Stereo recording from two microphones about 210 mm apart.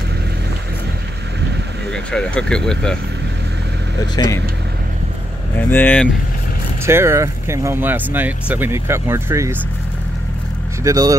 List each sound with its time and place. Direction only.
1.9 s speech: 5° left (ahead or behind)
4.1 s speech: 20° left (ahead or behind)
5.6 s speech: 10° left (ahead or behind)
6.9 s speech: 10° right (ahead or behind)
10.8 s speech: 15° right (ahead or behind)